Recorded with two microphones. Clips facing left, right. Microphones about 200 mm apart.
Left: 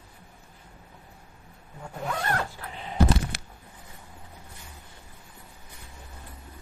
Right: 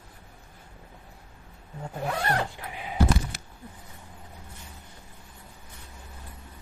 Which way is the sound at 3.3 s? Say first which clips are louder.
Left 3 dB; 80° left.